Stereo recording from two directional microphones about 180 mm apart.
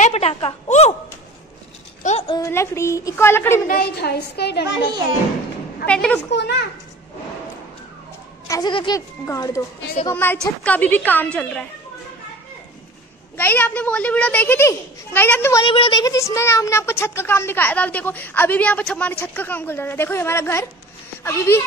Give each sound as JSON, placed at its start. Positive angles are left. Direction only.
{"t": 0.0, "sound": "a sound", "side_deg": 35}
{"t": 2.0, "sound": "a sound", "side_deg": 35}
{"t": 2.3, "sound": "speech", "side_deg": 15}
{"t": 3.6, "sound": "a woman's voice", "side_deg": 60}
{"t": 5.9, "sound": "a woman's voice", "side_deg": 5}
{"t": 8.5, "sound": "speech", "side_deg": 25}
{"t": 13.4, "sound": "speech", "side_deg": 10}
{"t": 15.6, "sound": "speech", "side_deg": 30}